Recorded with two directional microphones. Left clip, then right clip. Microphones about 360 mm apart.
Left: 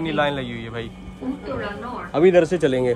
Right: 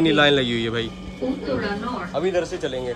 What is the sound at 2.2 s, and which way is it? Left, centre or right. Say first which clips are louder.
Speech: left 8 dB; centre.